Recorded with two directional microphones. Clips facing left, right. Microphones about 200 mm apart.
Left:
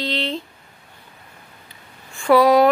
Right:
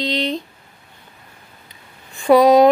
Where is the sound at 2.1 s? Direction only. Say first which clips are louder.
Right 3 dB; 20° right (ahead or behind).